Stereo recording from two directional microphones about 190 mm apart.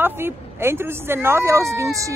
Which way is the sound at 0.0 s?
10° right (ahead or behind).